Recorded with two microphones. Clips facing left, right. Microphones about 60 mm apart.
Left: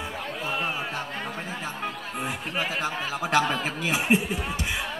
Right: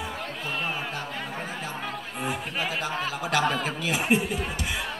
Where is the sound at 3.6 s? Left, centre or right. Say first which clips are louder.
Left 1 dB; left.